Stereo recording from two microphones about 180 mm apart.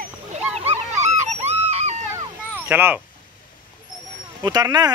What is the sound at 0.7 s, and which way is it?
Dog, 40° right (ahead or behind).